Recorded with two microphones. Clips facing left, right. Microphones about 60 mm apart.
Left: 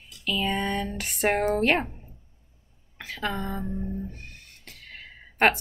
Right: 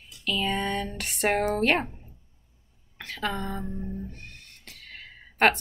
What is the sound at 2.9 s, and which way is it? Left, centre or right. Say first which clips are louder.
Speech: even; centre.